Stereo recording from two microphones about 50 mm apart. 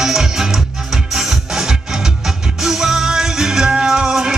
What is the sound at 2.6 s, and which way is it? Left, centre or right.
Music, centre.